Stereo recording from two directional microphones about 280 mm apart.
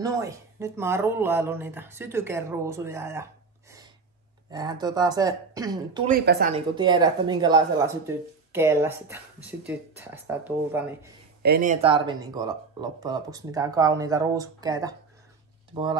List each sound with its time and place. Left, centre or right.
0.0 s speech: centre
4.5 s speech: centre
6.0 s speech: right
6.5 s speech: centre
11.4 s speech: right